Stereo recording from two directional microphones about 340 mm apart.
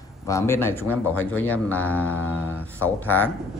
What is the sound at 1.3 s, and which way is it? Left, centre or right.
Speech, centre.